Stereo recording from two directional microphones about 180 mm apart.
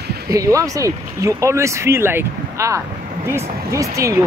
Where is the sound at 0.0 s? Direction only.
60° right (ahead or behind).